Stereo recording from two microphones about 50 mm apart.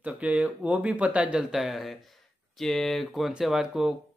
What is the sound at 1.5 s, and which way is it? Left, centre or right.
Speech, centre.